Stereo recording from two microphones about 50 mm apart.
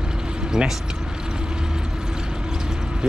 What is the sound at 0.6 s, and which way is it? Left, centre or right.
Speech, centre.